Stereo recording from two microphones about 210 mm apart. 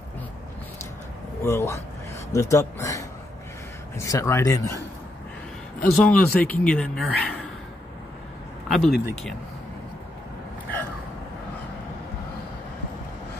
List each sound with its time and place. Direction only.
1.4 s a man's voice: 15° left (ahead or behind)
5.8 s speech: 5° left (ahead or behind)
8.6 s speech: centre (ahead or behind)